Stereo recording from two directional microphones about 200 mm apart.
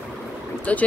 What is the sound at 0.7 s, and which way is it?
Speech, 5° left (ahead or behind).